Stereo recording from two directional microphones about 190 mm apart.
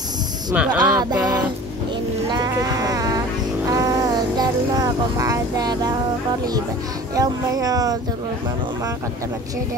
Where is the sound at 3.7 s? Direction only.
20° right (ahead or behind).